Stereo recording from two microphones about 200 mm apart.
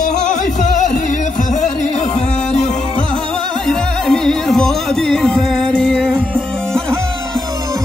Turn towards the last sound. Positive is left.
turn(degrees=5)  # may be behind; listen again after turning